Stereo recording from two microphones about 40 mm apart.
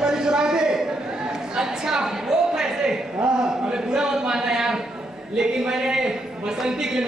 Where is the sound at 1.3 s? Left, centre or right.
Centre.